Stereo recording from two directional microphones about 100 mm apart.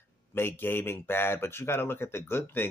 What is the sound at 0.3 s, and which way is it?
Speech, 20° left (ahead or behind).